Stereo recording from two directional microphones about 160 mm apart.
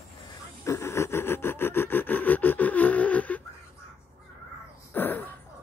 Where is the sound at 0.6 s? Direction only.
15° left (ahead or behind).